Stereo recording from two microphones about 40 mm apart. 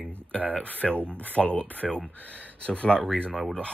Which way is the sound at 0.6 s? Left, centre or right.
Left.